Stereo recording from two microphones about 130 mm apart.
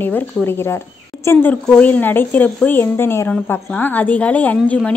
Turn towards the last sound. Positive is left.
turn(degrees=10)  # may be behind; listen again after turning